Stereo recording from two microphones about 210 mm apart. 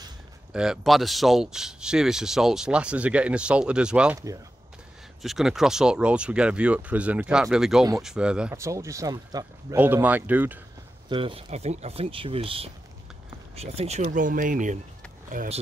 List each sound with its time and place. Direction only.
0.5 s speech: 5° right (ahead or behind)
5.2 s speech: centre (ahead or behind)
11.1 s speech: 25° right (ahead or behind)